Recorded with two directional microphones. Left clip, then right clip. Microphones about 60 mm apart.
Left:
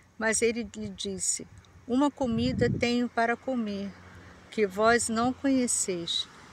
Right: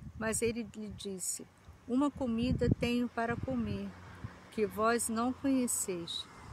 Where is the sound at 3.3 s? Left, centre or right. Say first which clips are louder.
Left 6 dB; left.